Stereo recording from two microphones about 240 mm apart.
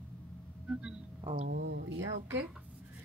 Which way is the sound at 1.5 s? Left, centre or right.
Right.